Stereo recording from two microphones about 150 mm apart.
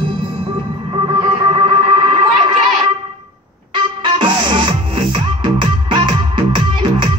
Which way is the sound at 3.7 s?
30° right (ahead or behind).